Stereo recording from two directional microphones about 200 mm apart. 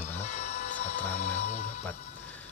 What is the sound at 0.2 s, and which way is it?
Music, 35° left (ahead or behind).